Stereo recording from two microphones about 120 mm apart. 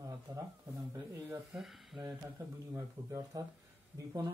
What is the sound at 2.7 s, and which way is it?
Speech, 25° right (ahead or behind).